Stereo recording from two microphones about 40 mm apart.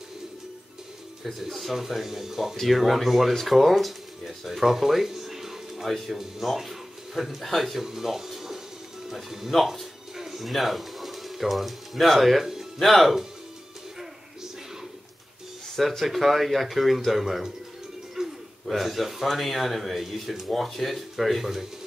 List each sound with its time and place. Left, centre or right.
1.2 s speech: centre
9.5 s music: centre
12.8 s speech: centre
15.9 s speech: centre
18.2 s a sound: centre
18.7 s speech: centre